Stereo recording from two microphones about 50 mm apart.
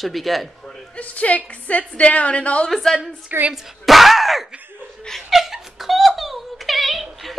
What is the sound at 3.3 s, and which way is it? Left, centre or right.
Speech, right.